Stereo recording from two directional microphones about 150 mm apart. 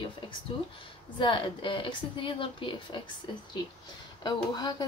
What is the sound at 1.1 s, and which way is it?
Speech, 35° left (ahead or behind).